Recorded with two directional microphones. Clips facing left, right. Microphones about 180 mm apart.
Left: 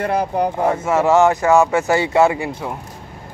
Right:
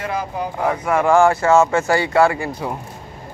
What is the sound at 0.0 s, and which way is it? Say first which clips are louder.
Speech: left 6 dB; 60° left (ahead or behind).